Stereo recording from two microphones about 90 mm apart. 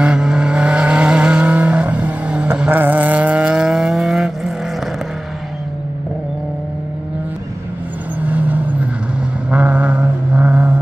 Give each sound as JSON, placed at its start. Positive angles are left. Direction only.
{"t": 0.0, "sound": "vehicle", "side_deg": -10}
{"t": 8.2, "sound": "vehicle", "side_deg": -20}
{"t": 9.5, "sound": "a sound", "side_deg": -15}